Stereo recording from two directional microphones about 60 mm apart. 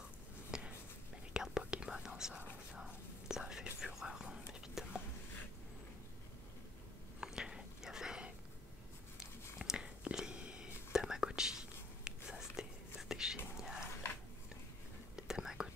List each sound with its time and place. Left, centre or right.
0.5 s a sound: centre
1.3 s whispering: centre
7.2 s whispering: centre
9.6 s whispering: centre
13.6 s a sound: centre
15.1 s whispering: centre